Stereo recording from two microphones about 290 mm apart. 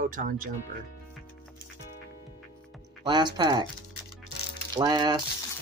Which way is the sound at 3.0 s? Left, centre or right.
Centre.